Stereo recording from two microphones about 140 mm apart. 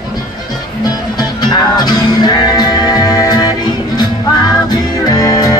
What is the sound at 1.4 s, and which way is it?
Music, 30° left (ahead or behind).